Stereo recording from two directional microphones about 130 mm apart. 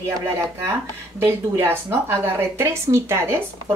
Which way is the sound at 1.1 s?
20° right (ahead or behind).